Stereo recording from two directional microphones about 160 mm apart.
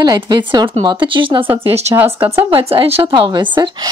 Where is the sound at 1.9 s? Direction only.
15° right (ahead or behind).